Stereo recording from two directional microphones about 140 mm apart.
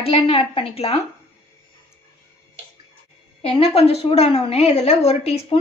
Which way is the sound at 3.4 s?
45° left (ahead or behind).